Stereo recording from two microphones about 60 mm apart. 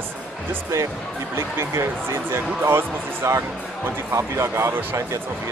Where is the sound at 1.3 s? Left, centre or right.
Right.